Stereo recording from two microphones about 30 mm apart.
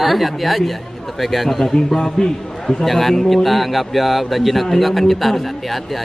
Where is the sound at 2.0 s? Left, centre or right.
Left.